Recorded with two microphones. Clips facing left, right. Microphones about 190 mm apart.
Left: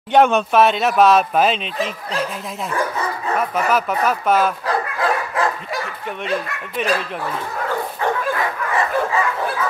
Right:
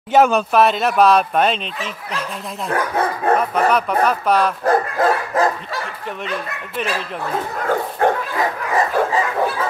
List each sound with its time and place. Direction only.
0.1 s speech: centre (ahead or behind)
2.7 s speech: 55° right (ahead or behind)
3.3 s speech: centre (ahead or behind)
4.6 s dog: 45° right (ahead or behind)
8.0 s dog: 50° right (ahead or behind)
8.7 s bow-wow: 35° right (ahead or behind)